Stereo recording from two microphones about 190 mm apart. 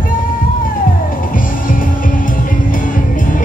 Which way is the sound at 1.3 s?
45° left (ahead or behind).